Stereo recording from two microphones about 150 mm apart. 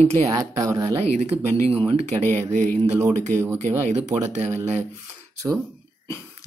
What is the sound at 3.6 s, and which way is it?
Speech, 50° right (ahead or behind).